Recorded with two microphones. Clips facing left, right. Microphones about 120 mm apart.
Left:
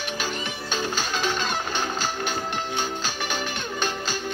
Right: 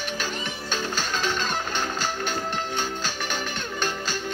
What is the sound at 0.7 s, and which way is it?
Music, 5° left (ahead or behind).